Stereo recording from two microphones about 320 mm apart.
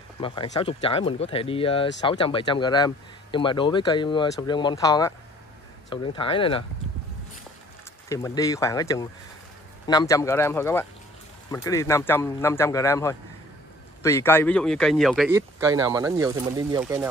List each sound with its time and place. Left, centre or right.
0.2 s speech: centre
8.1 s speech: centre